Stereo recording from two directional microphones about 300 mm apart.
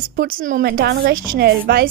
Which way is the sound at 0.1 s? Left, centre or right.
Right.